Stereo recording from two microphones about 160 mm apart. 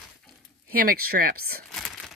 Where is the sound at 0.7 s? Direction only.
70° right (ahead or behind).